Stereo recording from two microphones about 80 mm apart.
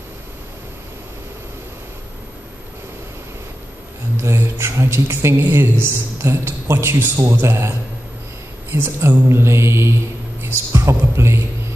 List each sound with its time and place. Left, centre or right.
4.2 s speech: right
8.7 s speech: right